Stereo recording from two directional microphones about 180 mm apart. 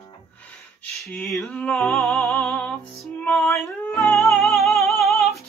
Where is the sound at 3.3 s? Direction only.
10° left (ahead or behind).